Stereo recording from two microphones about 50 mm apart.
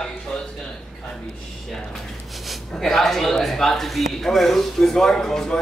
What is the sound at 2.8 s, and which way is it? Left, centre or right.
Speech, centre.